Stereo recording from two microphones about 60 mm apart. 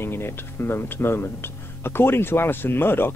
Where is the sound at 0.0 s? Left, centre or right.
Left.